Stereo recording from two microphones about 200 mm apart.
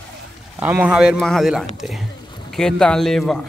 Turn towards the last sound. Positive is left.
turn(degrees=0)  # may be behind; listen again after turning